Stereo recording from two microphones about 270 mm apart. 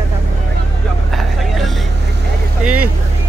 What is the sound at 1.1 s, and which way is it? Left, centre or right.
Speech, centre.